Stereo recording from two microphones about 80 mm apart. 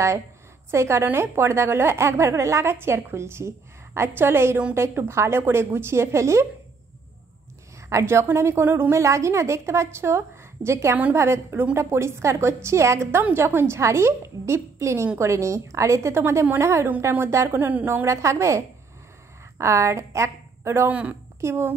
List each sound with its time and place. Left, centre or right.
0.7 s a woman's voice: right
7.9 s a woman's voice: right
8.9 s a woman's voice: right
18.0 s a woman's voice: right
19.6 s a woman's voice: right
20.9 s a woman's voice: centre
21.4 s a woman's voice: right